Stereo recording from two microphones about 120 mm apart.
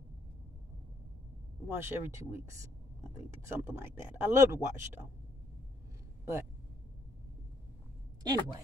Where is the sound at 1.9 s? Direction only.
20° right (ahead or behind).